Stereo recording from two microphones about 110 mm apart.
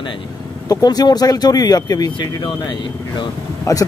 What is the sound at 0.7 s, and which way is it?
Speech, 35° left (ahead or behind).